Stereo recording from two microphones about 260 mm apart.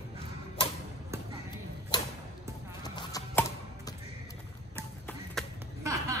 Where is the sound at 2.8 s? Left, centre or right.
Centre.